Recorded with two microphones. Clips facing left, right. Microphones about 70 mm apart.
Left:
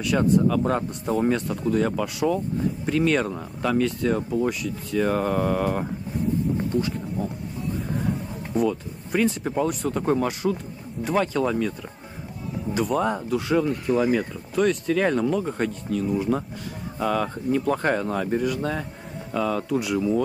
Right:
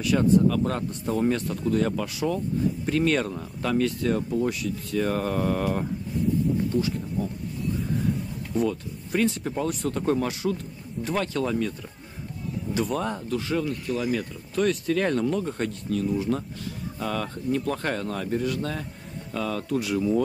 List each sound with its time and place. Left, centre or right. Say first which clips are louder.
0.0 s speech: even; centre
8.5 s speech: left 2 dB; centre
12.7 s speech: left 4 dB; centre
13.7 s speech: left 6 dB; centre
14.1 s speech: left 4 dB; centre